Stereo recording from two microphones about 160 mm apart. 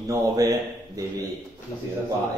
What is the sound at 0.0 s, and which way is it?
Speech, 20° right (ahead or behind).